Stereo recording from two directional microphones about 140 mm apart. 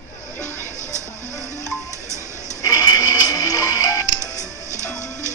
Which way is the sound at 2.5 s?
25° left (ahead or behind).